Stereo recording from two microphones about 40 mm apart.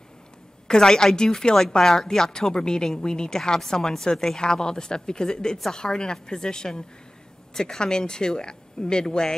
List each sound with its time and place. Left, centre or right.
0.7 s a woman's voice: centre